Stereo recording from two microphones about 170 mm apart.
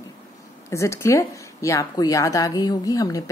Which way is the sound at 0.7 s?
15° left (ahead or behind).